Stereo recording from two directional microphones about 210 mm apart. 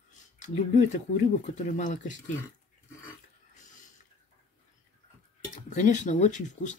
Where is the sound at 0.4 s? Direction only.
35° left (ahead or behind).